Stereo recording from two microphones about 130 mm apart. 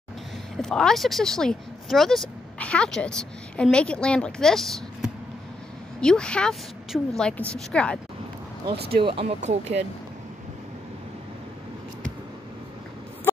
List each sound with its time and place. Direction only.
0.6 s a woman's voice: 5° left (ahead or behind)
8.6 s speech: 40° right (ahead or behind)
9.4 s speech: 60° right (ahead or behind)